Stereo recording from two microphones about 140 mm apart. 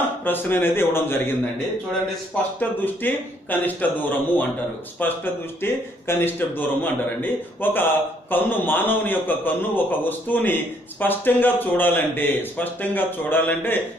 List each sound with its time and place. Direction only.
0.2 s speech: 15° left (ahead or behind)
2.8 s speech: 15° left (ahead or behind)